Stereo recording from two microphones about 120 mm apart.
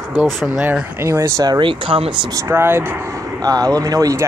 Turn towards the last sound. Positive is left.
turn(degrees=-30)  # may be behind; listen again after turning